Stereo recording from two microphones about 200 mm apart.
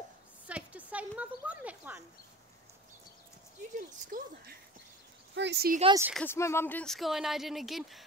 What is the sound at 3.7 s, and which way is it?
Speech, 45° right (ahead or behind).